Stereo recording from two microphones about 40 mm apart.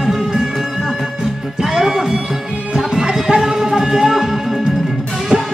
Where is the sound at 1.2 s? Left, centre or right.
Centre.